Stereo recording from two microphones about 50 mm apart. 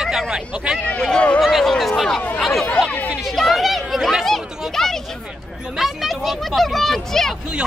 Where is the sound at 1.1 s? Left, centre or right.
Left.